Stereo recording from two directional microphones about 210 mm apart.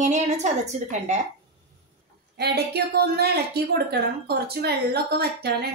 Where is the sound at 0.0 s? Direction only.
35° right (ahead or behind).